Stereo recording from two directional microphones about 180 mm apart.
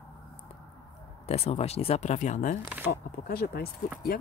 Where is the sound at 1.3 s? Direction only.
35° left (ahead or behind).